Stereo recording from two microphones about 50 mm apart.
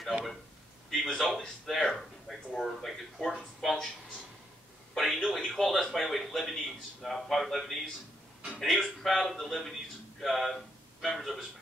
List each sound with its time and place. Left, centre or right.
0.8 s a man's voice: centre
4.9 s speech: centre